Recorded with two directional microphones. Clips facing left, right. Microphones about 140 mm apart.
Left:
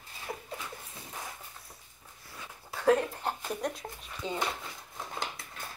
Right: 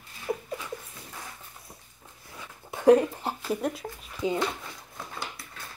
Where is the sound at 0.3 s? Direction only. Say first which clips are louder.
Right 9 dB; 20° right (ahead or behind).